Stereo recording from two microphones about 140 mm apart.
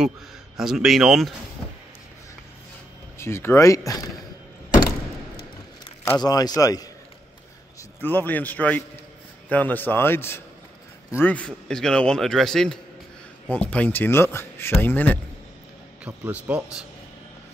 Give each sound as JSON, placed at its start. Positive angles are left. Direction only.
{"t": 0.6, "sound": "a man's voice", "side_deg": -5}
{"t": 3.2, "sound": "speech", "side_deg": 20}
{"t": 6.1, "sound": "speech", "side_deg": 30}
{"t": 8.0, "sound": "a man's voice", "side_deg": 15}
{"t": 16.0, "sound": "speech", "side_deg": -10}